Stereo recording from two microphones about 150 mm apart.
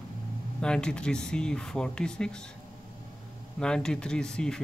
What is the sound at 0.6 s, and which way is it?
Speech, 5° left (ahead or behind).